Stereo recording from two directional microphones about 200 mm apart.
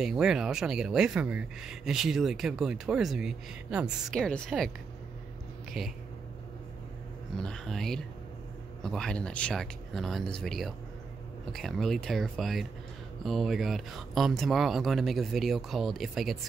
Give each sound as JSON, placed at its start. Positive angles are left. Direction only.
{"t": 0.0, "sound": "speech", "side_deg": -5}
{"t": 5.8, "sound": "speech", "side_deg": 0}
{"t": 7.3, "sound": "speech", "side_deg": 5}